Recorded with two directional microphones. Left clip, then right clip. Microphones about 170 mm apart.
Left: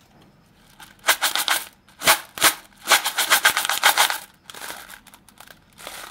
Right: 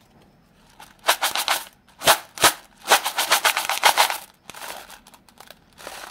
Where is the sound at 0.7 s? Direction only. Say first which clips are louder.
Left 1 dB; 15° right (ahead or behind).